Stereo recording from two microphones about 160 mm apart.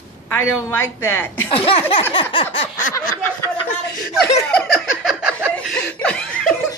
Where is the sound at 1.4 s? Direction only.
35° left (ahead or behind).